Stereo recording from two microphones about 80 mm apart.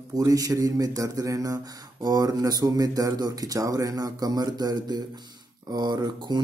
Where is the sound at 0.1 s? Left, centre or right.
Right.